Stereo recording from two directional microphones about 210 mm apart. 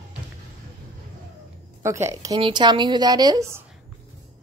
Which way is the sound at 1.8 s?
15° right (ahead or behind).